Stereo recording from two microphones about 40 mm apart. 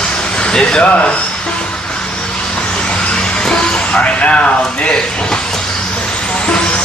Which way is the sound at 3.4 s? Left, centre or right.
Left.